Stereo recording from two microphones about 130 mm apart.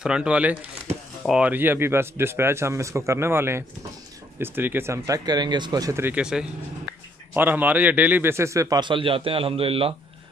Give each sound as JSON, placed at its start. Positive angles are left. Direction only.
{"t": 0.0, "sound": "a man's voice", "side_deg": -5}
{"t": 6.2, "sound": "a man's voice", "side_deg": -5}